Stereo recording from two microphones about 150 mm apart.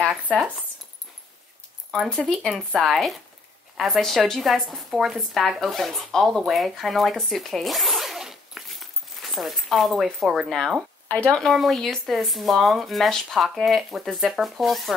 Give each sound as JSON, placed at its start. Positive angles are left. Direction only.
{"t": 0.1, "sound": "speech", "side_deg": 0}
{"t": 1.9, "sound": "a woman's voice", "side_deg": 5}
{"t": 11.1, "sound": "speech", "side_deg": 10}